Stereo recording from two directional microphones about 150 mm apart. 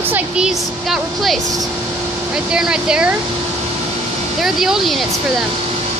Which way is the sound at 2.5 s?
5° right (ahead or behind).